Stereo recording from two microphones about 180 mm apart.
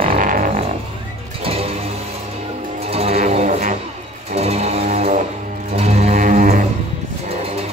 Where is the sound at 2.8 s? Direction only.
35° right (ahead or behind).